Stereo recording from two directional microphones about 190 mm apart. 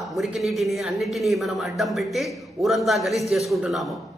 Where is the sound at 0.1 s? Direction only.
Centre (ahead or behind).